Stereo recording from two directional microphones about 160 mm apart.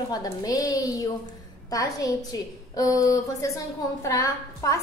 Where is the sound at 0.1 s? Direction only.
25° left (ahead or behind).